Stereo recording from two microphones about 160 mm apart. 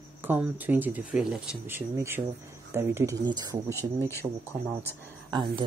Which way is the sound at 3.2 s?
25° right (ahead or behind).